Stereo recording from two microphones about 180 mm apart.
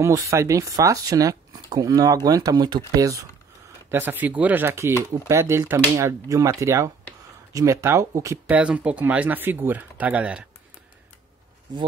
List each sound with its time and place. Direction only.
0.0 s speech: 15° right (ahead or behind)